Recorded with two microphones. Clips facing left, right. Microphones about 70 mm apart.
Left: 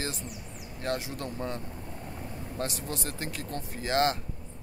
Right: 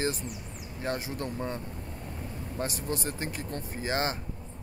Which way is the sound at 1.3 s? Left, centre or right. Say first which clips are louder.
Right 1 dB; centre.